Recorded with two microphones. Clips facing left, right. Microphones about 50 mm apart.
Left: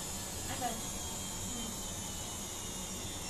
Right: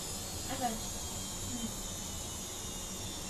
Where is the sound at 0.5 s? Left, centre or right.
Left.